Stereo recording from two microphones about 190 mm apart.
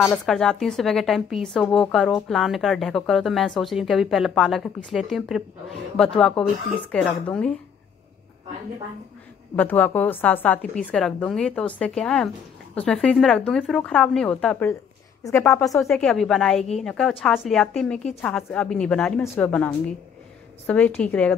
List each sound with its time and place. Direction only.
0.0 s a woman's voice: centre (ahead or behind)
9.6 s a woman's voice: 10° left (ahead or behind)
15.8 s a woman's voice: centre (ahead or behind)